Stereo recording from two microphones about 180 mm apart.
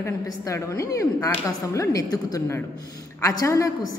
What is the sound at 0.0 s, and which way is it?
A man's voice, 15° left (ahead or behind).